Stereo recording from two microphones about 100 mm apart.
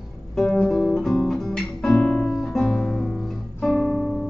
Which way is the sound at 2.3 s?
5° left (ahead or behind).